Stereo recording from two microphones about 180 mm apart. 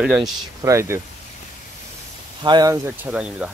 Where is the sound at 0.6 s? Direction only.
15° right (ahead or behind).